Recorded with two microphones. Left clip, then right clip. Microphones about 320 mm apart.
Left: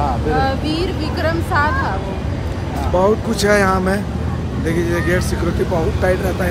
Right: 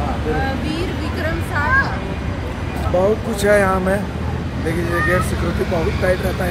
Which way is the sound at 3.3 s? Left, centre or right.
Centre.